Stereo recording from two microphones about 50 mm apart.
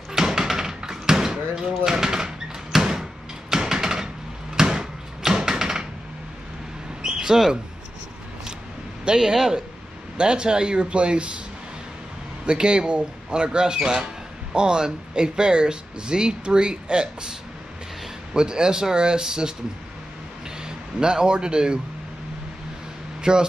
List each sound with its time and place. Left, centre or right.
0.1 s door: centre
4.6 s a sound: centre
7.0 s a sound: centre
9.0 s speech: centre
12.4 s speech: centre
20.6 s speech: centre
23.3 s speech: centre